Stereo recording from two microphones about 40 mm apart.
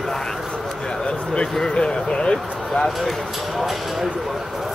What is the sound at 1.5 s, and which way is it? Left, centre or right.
Speech, centre.